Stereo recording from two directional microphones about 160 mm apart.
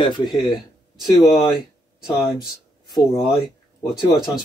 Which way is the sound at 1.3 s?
5° right (ahead or behind).